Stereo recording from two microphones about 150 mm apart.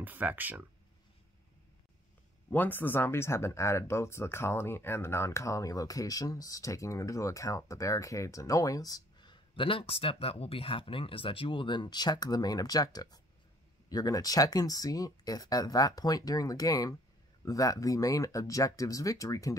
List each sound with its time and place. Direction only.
0.0 s speech: 10° right (ahead or behind)
2.5 s speech: 10° left (ahead or behind)